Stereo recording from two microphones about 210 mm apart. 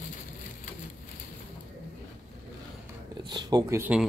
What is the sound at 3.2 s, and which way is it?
Speech, 20° right (ahead or behind).